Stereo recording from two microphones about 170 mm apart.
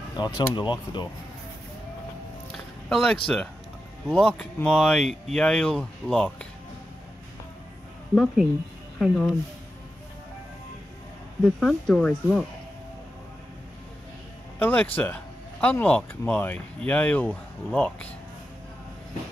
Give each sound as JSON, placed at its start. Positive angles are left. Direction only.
{"t": 0.2, "sound": "speech", "side_deg": 25}
{"t": 2.5, "sound": "a sound", "side_deg": 5}
{"t": 4.1, "sound": "speech", "side_deg": 5}
{"t": 8.1, "sound": "speech", "side_deg": 5}
{"t": 11.4, "sound": "speech", "side_deg": 5}
{"t": 14.6, "sound": "speech", "side_deg": 10}